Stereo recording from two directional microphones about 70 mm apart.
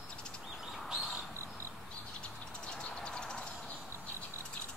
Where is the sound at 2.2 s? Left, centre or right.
Centre.